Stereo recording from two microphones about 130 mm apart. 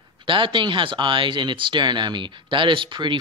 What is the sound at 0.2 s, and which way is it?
Speech, 40° right (ahead or behind).